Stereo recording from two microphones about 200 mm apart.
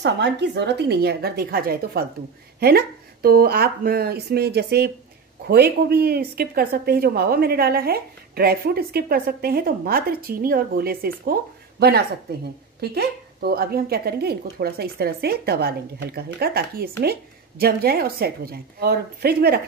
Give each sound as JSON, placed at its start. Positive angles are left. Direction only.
{"t": 0.0, "sound": "a woman's voice", "side_deg": -60}